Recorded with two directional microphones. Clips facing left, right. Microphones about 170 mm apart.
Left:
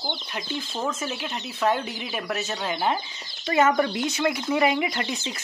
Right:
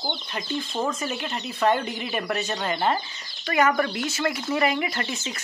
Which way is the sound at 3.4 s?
25° left (ahead or behind).